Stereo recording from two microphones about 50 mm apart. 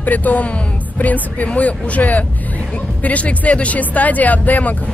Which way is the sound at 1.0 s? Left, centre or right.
Left.